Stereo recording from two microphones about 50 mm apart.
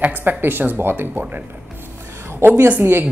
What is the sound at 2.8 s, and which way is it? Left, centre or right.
Speech, right.